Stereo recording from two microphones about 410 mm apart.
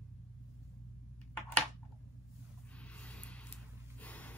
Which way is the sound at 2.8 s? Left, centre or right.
Centre.